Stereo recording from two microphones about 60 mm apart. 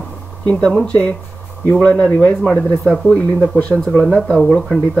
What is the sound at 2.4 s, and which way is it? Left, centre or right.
Speech, centre.